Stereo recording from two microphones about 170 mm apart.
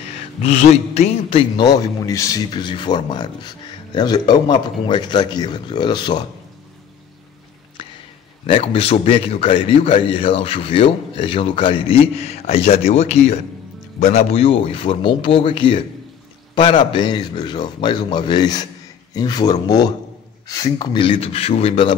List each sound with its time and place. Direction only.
0.4 s a man's voice: 40° left (ahead or behind)
1.6 s a man's voice: 25° left (ahead or behind)
8.5 s a man's voice: 35° left (ahead or behind)